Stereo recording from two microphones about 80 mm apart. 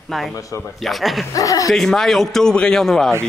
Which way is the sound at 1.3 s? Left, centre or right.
Left.